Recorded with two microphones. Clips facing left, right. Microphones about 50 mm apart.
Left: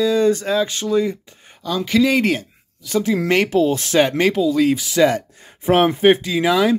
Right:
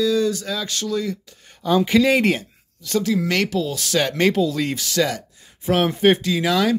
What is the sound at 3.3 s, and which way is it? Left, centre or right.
Speech, left.